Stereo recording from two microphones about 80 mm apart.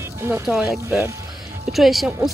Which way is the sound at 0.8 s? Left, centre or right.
Right.